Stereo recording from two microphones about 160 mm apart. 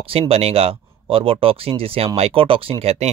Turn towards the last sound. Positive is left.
turn(degrees=-40)  # may be behind; listen again after turning